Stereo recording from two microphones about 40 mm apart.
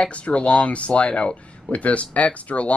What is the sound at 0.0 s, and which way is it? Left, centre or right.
Speech, left.